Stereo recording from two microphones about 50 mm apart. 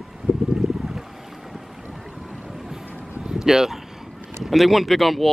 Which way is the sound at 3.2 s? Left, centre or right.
Centre.